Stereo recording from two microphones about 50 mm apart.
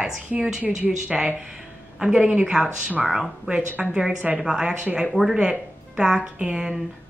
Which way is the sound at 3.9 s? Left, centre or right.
Centre.